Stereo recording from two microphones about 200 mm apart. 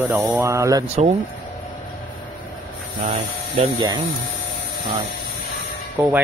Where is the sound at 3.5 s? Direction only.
25° right (ahead or behind).